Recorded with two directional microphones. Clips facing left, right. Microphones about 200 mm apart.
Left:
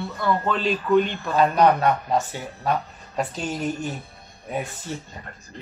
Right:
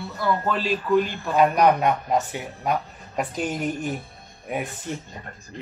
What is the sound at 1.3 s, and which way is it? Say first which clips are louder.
Speech: even; 15° right (ahead or behind).